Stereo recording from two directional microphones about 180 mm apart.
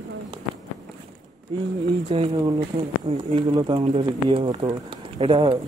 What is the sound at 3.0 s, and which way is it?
A man's voice, 25° right (ahead or behind).